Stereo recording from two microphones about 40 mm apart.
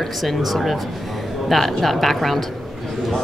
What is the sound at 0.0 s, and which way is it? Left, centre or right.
A woman's voice, centre.